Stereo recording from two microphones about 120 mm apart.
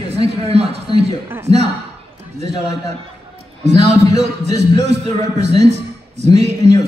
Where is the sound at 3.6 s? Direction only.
65° right (ahead or behind).